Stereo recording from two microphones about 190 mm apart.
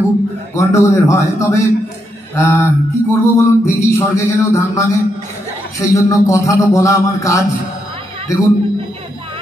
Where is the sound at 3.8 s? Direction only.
15° left (ahead or behind).